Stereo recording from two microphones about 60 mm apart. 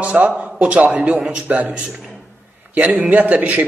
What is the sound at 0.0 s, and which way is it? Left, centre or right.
A man's voice, right.